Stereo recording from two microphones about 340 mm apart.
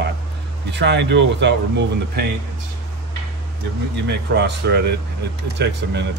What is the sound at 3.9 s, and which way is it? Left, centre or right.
Speech, right.